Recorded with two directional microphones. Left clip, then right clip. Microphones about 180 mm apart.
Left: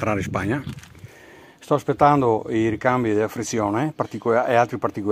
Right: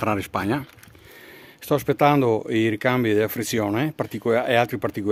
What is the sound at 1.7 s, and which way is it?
Speech, 15° right (ahead or behind).